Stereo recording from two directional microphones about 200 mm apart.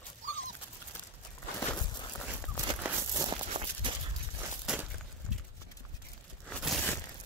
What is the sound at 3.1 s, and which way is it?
Walk, 20° right (ahead or behind).